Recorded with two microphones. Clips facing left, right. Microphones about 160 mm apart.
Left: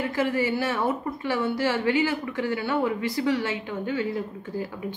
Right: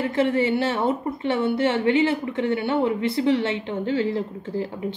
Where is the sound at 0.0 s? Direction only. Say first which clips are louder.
Right 4 dB; 25° right (ahead or behind).